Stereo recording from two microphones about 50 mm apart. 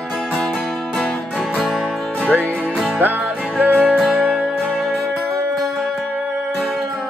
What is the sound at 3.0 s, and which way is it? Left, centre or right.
Music, right.